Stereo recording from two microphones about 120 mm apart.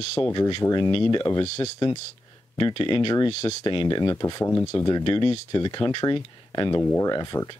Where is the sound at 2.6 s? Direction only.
40° left (ahead or behind).